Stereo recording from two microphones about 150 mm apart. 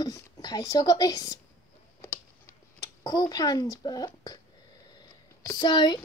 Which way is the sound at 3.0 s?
25° left (ahead or behind).